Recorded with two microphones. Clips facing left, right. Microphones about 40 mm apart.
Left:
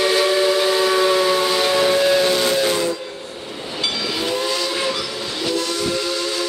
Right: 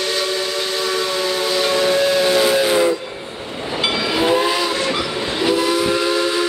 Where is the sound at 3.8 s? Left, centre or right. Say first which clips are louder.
Right 5 dB; right.